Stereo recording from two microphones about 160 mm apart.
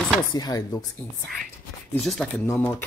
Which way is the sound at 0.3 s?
25° left (ahead or behind).